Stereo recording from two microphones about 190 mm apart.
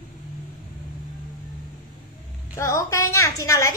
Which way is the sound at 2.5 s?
15° left (ahead or behind).